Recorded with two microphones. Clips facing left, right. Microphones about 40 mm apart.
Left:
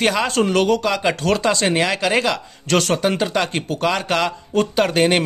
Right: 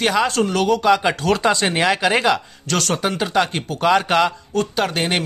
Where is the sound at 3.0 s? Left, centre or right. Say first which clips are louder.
Even; centre.